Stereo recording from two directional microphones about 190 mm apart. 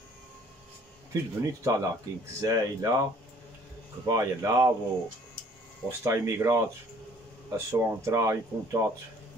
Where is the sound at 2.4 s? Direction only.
20° right (ahead or behind).